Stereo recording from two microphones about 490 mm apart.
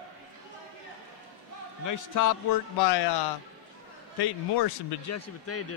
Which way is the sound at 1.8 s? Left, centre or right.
Left.